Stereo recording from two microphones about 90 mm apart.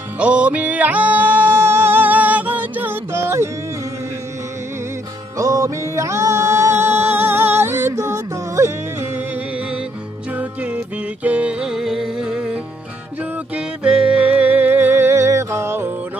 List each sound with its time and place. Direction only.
0.2 s music: 15° right (ahead or behind)
5.4 s music: 40° right (ahead or behind)